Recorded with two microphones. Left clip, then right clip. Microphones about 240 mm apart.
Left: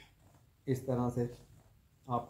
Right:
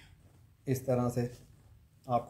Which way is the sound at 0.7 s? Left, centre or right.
Right.